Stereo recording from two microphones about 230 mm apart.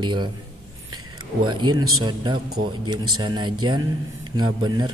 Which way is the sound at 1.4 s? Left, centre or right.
Centre.